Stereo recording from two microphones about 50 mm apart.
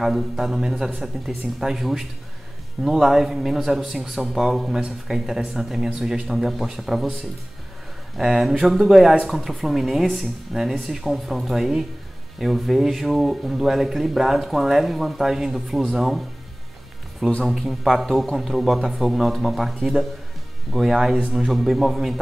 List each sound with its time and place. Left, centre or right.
0.0 s a man's voice: centre
8.2 s speech: centre
17.5 s speech: centre